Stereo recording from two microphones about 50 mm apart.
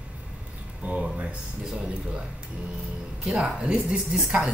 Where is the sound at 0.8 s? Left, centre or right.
Right.